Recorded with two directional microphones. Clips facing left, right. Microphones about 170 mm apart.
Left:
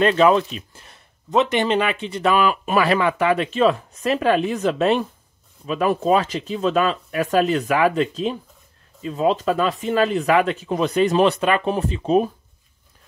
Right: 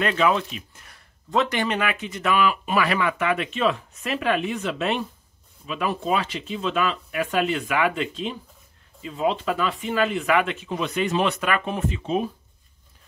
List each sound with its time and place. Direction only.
0.0 s speech: 35° left (ahead or behind)
2.8 s speech: 30° left (ahead or behind)